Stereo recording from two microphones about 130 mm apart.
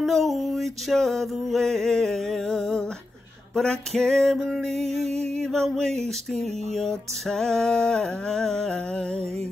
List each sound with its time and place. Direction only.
0.0 s music: centre (ahead or behind)
5.0 s music: 55° right (ahead or behind)
5.4 s music: 5° left (ahead or behind)